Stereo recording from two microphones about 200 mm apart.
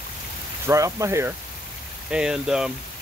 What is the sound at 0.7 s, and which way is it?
Speech, 15° right (ahead or behind).